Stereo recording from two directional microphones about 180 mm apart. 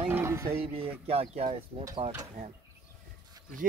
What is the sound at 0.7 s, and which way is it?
Speech, 35° right (ahead or behind).